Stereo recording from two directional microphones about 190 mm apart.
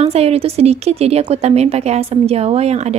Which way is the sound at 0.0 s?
30° right (ahead or behind).